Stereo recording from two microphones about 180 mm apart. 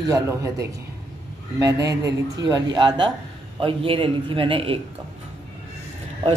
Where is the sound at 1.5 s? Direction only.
15° right (ahead or behind).